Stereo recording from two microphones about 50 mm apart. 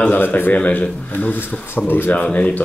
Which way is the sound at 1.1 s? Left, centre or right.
Left.